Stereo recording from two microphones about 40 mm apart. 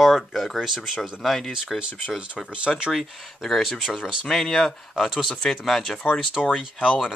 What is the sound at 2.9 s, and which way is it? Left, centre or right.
Speech, centre.